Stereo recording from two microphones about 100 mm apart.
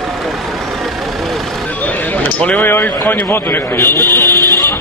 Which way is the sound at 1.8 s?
15° left (ahead or behind).